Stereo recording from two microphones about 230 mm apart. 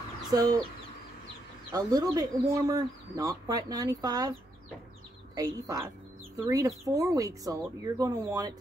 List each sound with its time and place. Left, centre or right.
0.3 s speech: centre
1.7 s speech: centre